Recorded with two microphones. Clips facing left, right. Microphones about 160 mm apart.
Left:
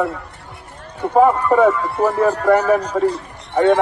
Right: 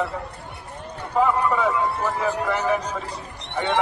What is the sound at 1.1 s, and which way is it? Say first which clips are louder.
Speech: left 7 dB; 50° left (ahead or behind).